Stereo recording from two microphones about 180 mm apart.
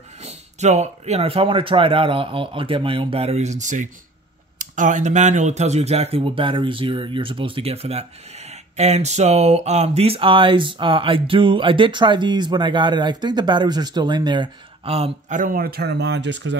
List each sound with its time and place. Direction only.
0.2 s speech: 40° right (ahead or behind); by 16.5 s 80° right